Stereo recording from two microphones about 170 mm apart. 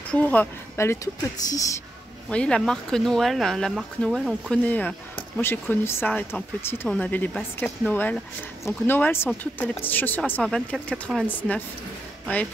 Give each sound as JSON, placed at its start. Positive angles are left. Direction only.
{"t": 0.1, "sound": "speech", "side_deg": 10}
{"t": 2.2, "sound": "speech", "side_deg": 5}
{"t": 4.6, "sound": "speech", "side_deg": 10}